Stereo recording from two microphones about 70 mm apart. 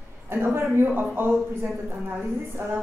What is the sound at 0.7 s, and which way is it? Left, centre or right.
A woman's voice, right.